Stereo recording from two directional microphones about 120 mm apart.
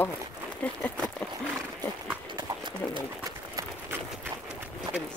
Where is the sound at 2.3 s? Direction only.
40° right (ahead or behind).